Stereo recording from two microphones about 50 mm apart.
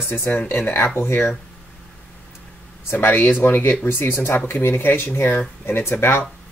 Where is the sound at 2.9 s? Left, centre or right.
Left.